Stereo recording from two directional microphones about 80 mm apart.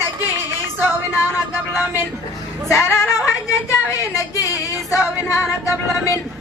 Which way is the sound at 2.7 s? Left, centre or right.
Left.